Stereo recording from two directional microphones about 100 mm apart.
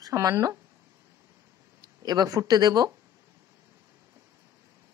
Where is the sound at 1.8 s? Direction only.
40° right (ahead or behind).